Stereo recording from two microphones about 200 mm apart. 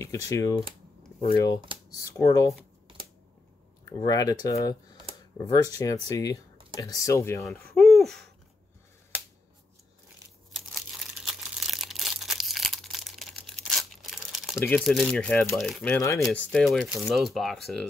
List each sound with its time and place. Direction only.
0.0 s speech: 15° left (ahead or behind)
3.8 s speech: 20° left (ahead or behind)
8.0 s owl: centre (ahead or behind)
11.6 s a sound: centre (ahead or behind)
14.8 s speech: centre (ahead or behind)
16.3 s speech: 5° left (ahead or behind)